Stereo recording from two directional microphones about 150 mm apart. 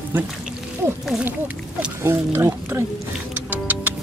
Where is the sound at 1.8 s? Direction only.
15° right (ahead or behind).